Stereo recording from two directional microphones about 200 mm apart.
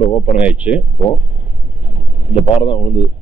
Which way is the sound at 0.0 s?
30° left (ahead or behind).